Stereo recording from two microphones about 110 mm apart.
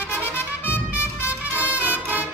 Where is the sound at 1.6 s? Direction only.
15° right (ahead or behind).